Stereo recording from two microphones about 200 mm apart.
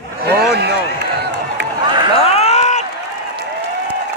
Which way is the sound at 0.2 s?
55° right (ahead or behind).